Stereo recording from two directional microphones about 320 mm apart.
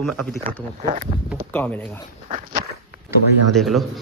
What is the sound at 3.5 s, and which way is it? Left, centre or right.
Speech, centre.